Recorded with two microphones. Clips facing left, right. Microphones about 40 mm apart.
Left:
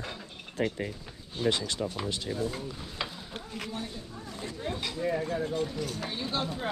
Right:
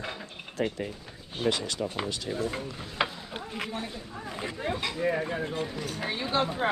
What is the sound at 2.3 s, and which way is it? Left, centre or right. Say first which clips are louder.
Speech: right 1 dB; right.